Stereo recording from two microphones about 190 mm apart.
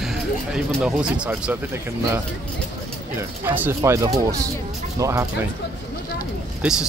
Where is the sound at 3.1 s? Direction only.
10° right (ahead or behind).